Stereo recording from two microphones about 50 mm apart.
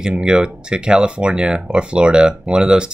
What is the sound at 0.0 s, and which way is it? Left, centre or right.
Speech, centre.